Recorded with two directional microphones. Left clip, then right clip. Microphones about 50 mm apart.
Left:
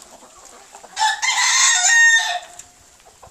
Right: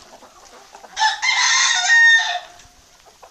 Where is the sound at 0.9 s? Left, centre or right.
Left.